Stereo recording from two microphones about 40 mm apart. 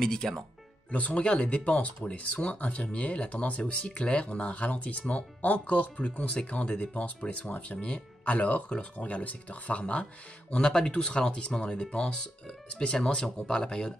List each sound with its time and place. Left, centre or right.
0.0 s speech: centre
0.9 s speech: left
10.6 s speech: left